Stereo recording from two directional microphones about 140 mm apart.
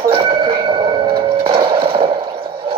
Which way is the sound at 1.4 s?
40° right (ahead or behind).